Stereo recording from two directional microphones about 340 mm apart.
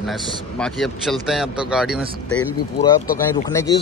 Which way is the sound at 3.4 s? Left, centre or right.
Centre.